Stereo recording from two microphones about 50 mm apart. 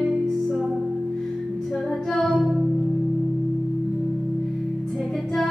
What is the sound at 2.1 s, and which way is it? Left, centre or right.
Music, centre.